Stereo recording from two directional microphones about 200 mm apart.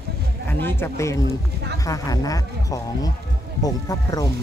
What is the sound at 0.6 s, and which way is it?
Speech, 10° left (ahead or behind).